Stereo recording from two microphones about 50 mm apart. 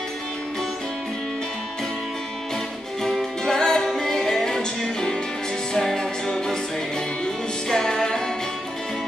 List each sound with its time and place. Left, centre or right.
3.0 s music: centre
7.7 s music: centre